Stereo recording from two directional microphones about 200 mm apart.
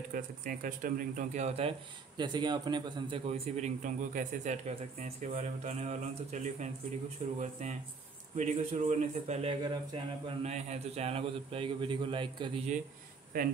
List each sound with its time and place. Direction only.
0.1 s speech: 45° right (ahead or behind)
2.1 s a man's voice: 20° right (ahead or behind)
13.3 s speech: 45° right (ahead or behind)